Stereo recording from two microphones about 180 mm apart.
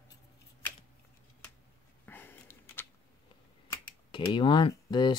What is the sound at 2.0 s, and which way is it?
Sniff, 10° left (ahead or behind).